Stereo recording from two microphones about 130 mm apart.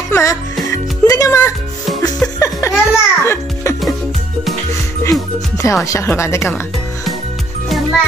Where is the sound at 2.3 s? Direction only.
25° left (ahead or behind).